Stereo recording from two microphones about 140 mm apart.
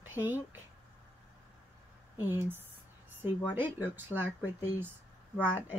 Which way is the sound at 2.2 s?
15° right (ahead or behind).